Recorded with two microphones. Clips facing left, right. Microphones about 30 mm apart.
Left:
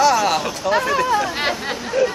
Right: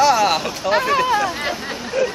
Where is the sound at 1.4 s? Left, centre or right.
Left.